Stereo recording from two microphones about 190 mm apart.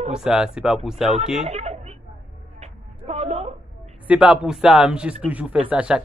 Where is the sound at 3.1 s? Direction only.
35° right (ahead or behind).